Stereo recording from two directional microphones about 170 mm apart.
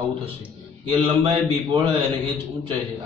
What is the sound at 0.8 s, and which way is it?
Speech, 30° right (ahead or behind).